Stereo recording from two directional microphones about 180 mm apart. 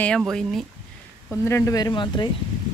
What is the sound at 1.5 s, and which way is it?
Speech, 15° left (ahead or behind).